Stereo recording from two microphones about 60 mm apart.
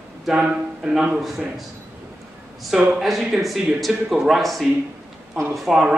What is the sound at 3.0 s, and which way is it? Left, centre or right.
Speech, centre.